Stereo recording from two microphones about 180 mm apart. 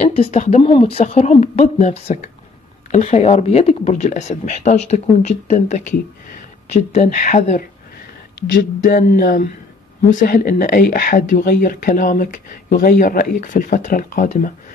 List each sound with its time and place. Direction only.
0.0 s speech: 35° left (ahead or behind)
8.8 s speech: 50° left (ahead or behind)